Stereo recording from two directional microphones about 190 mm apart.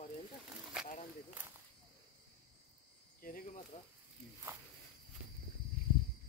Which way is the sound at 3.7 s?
30° left (ahead or behind).